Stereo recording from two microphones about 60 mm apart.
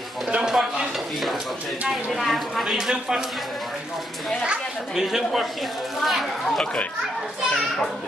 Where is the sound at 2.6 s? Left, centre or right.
Centre.